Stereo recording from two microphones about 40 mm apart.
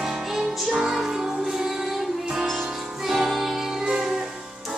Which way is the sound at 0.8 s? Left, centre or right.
Centre.